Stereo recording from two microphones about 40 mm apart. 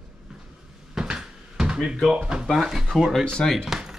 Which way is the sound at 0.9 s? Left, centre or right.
Centre.